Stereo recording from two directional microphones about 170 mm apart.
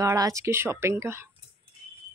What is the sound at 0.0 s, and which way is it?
A woman's voice, 20° right (ahead or behind).